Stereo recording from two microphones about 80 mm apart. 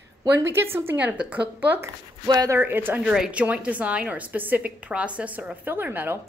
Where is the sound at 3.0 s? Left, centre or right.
Centre.